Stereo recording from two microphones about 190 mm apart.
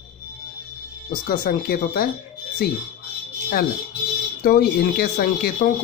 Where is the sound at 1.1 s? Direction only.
50° left (ahead or behind).